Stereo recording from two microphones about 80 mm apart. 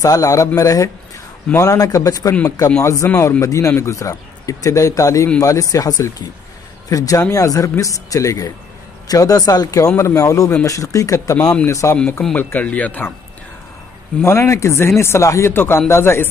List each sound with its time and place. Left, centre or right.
0.0 s a man's voice: left
2.8 s a man's voice: left
12.5 s speech: centre
14.2 s speech: left